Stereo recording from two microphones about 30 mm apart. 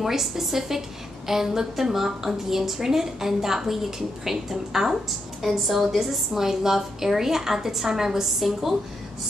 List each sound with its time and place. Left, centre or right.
0.0 s a woman's voice: centre